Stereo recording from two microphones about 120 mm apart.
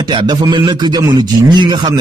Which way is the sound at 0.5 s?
35° right (ahead or behind).